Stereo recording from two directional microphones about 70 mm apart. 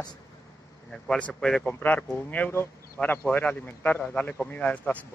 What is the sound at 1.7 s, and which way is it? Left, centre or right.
A man's voice, left.